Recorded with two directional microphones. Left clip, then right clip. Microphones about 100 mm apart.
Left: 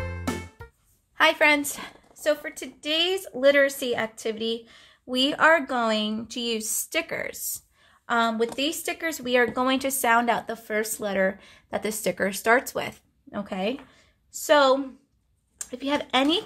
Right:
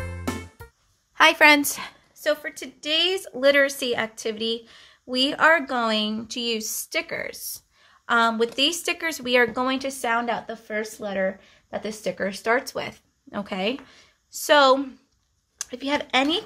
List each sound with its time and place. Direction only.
0.0 s music: centre (ahead or behind)
1.1 s a sound: 35° right (ahead or behind)
2.2 s a woman's voice: centre (ahead or behind)
8.1 s speech: 20° right (ahead or behind)
9.8 s speech: 35° left (ahead or behind)
12.7 s speech: 10° left (ahead or behind)
13.3 s a woman's voice: 15° right (ahead or behind)
15.5 s a sound: 5° right (ahead or behind)
15.8 s speech: 10° left (ahead or behind)
16.1 s speech: 20° left (ahead or behind)